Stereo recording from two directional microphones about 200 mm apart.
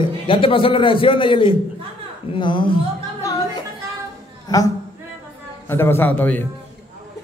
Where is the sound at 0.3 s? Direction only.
25° left (ahead or behind).